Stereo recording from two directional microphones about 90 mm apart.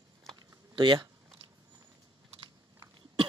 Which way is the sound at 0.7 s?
60° right (ahead or behind).